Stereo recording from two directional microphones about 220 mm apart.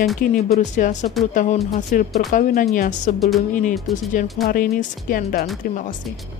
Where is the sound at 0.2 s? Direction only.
45° left (ahead or behind).